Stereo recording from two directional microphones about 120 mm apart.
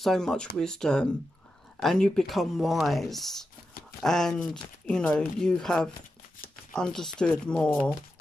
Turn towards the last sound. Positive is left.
turn(degrees=5)  # may be behind; listen again after turning